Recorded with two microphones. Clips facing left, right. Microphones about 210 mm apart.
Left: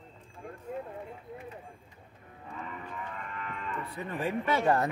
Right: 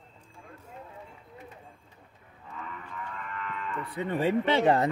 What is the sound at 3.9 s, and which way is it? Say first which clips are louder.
Speech: right 7 dB; 25° right (ahead or behind).